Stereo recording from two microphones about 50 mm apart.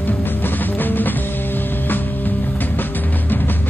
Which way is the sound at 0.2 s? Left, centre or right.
Left.